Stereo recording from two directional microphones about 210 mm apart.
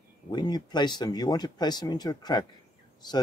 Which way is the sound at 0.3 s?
20° left (ahead or behind).